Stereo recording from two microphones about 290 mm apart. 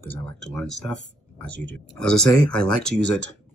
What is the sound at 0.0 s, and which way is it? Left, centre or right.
Speech, centre.